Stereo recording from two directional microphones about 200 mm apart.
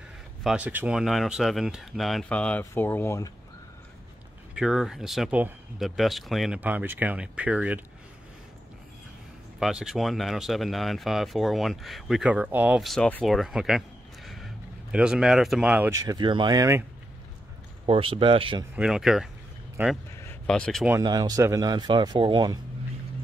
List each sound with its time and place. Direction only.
0.4 s speech: 5° right (ahead or behind); by 3.3 s 10° left (ahead or behind)
4.6 s speech: centre (ahead or behind)
9.6 s speech: centre (ahead or behind)
17.8 s speech: 25° right (ahead or behind)
18.8 s speech: 5° right (ahead or behind)
20.4 s speech: 5° left (ahead or behind)
21.0 s speech: 20° right (ahead or behind)